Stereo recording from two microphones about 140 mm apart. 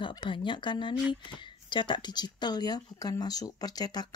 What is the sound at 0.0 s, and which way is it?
Speech, 35° left (ahead or behind).